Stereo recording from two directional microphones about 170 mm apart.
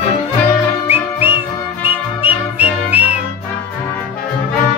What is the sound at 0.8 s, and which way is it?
Music, 10° right (ahead or behind).